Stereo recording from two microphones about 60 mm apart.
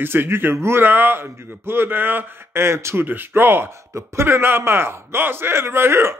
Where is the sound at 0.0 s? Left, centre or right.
Right.